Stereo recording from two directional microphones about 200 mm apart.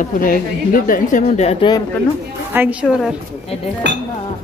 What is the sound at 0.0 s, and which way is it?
Speech, 45° left (ahead or behind).